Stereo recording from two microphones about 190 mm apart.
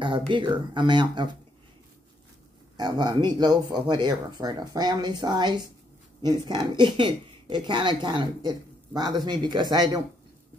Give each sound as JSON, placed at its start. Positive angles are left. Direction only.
{"t": 0.0, "sound": "speech", "side_deg": -25}
{"t": 2.8, "sound": "speech", "side_deg": -20}